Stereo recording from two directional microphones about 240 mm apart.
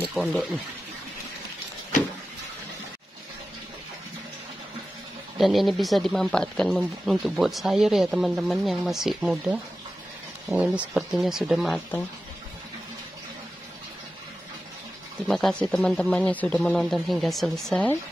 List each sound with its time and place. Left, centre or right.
0.1 s speech: centre
5.4 s speech: centre
15.2 s speech: centre